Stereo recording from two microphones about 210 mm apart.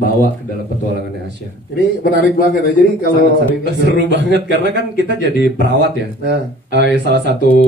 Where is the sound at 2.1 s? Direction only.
55° right (ahead or behind).